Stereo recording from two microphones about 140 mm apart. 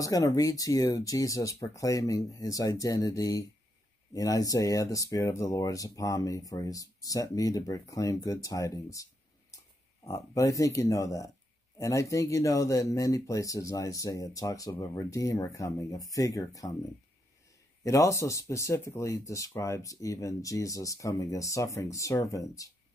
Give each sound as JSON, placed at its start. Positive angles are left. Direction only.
{"t": 0.0, "sound": "speech", "side_deg": 25}
{"t": 17.8, "sound": "speech", "side_deg": 20}